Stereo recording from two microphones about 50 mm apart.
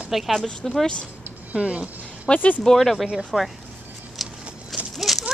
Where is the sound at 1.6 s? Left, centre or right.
Right.